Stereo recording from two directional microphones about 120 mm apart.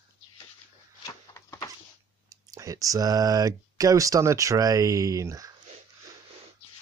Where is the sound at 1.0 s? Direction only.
30° left (ahead or behind).